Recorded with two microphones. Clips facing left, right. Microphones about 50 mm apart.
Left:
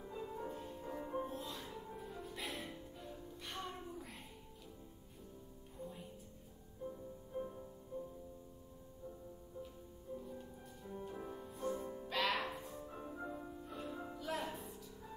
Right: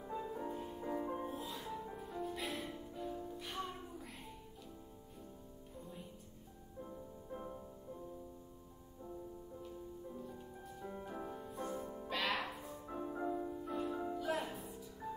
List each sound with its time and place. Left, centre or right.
0.0 s music: centre
6.9 s music: centre
10.8 s music: right
11.2 s music: centre